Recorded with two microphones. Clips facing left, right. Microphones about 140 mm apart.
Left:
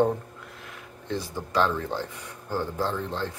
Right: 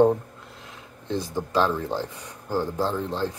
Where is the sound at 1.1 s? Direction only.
15° right (ahead or behind).